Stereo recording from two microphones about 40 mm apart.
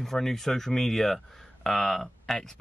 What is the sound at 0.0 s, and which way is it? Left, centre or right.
Speech, centre.